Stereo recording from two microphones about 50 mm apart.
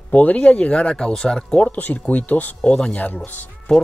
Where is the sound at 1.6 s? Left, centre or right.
Left.